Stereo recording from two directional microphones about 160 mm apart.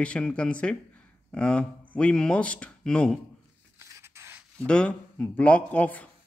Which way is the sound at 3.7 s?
20° right (ahead or behind).